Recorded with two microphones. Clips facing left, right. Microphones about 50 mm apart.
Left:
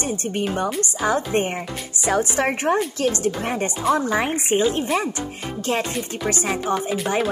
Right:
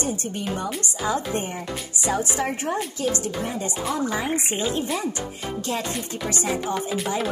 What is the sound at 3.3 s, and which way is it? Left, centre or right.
Speech, left.